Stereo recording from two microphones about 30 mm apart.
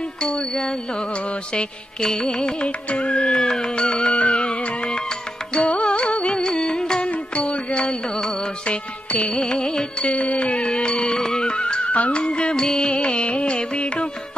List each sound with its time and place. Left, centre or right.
1.5 s music: left
2.6 s music: left
3.4 s music: left
5.6 s music: left
7.1 s music: left
9.4 s music: left
10.2 s music: left
11.1 s music: centre
11.4 s music: left